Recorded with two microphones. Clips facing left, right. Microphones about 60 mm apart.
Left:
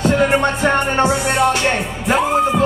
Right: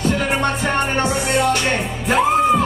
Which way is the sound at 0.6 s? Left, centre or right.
Left.